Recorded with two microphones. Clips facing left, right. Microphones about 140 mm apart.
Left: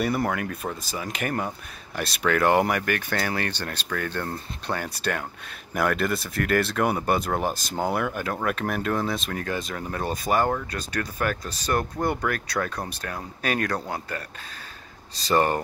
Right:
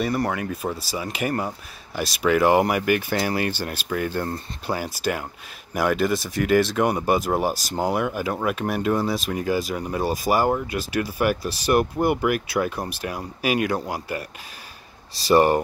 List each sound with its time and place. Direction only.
0.0 s speech: centre (ahead or behind)
15.3 s speech: 15° right (ahead or behind)